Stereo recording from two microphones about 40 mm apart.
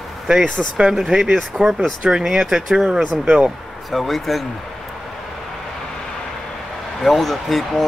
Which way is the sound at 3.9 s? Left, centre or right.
Centre.